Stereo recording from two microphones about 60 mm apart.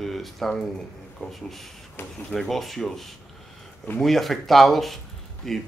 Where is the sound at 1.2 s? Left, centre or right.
Left.